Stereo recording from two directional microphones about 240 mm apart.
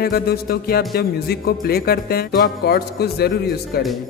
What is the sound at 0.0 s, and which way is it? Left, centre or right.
Speech, left.